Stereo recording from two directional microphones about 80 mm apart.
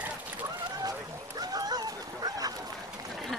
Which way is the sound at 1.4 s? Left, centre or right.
Right.